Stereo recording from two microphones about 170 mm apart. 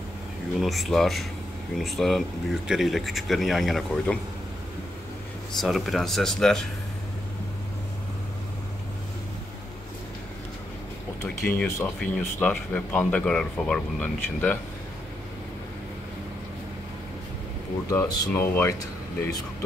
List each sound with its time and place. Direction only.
0.6 s speech: centre (ahead or behind)
5.6 s speech: centre (ahead or behind)
11.2 s speech: 10° left (ahead or behind)
17.8 s speech: 20° left (ahead or behind)